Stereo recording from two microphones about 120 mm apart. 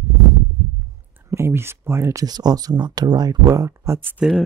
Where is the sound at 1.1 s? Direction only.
20° right (ahead or behind).